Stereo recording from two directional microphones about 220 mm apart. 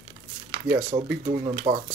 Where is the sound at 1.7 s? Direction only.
30° right (ahead or behind).